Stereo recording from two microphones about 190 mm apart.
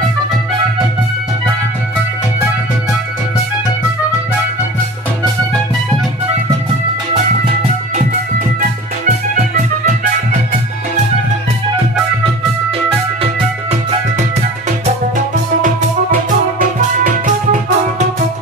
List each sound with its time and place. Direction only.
17.0 s music: 45° right (ahead or behind)